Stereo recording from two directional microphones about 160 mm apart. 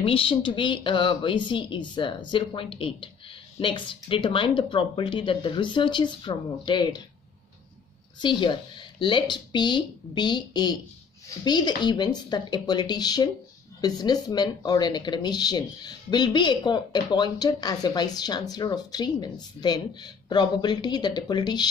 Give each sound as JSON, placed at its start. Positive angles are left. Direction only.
{"t": 0.0, "sound": "speech", "side_deg": 35}
{"t": 8.2, "sound": "speech", "side_deg": 30}